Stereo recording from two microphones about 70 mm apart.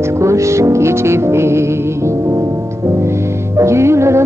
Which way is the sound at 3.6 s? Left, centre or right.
Right.